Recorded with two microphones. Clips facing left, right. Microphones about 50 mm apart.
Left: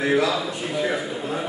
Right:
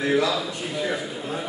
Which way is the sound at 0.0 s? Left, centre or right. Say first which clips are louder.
Left 1 dB; centre.